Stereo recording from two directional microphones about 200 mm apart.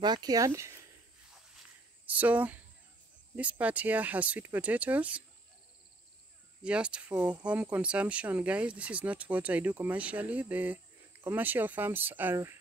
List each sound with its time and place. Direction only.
0.0 s speech: 20° right (ahead or behind)
2.0 s speech: 10° right (ahead or behind)
6.6 s speech: 5° right (ahead or behind)